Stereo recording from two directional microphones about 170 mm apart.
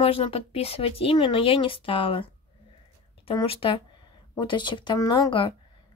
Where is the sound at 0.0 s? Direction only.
35° left (ahead or behind).